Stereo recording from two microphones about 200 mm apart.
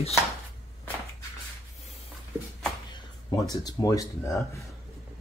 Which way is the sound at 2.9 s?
20° left (ahead or behind).